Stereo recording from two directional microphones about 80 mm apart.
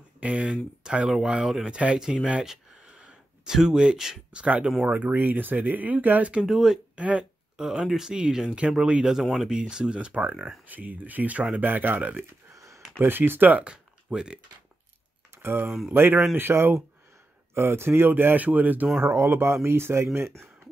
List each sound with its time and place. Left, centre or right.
0.2 s speech: centre
6.4 s speech: centre
7.0 s a sound: centre
7.6 s speech: centre
12.5 s a sound: right
13.0 s speech: right
15.3 s speech: right
19.0 s speech: right